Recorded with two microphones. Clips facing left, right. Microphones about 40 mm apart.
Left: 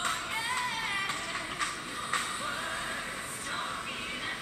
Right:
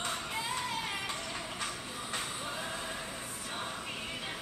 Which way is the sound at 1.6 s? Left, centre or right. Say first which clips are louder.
Left 4 dB; left.